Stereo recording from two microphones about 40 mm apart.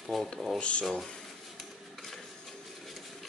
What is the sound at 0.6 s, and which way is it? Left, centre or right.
Speech, left.